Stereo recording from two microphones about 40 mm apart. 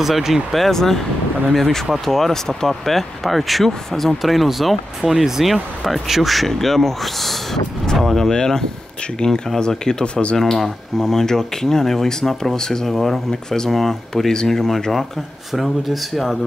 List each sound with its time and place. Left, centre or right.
0.0 s speech: centre
7.8 s vehicle: centre
8.1 s speech: centre
10.0 s speech: left
10.3 s speech: centre
12.9 s speech: centre